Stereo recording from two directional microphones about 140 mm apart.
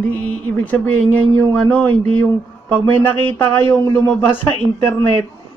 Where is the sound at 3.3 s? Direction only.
15° left (ahead or behind).